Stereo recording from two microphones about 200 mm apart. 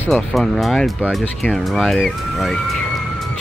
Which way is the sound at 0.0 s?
Centre (ahead or behind).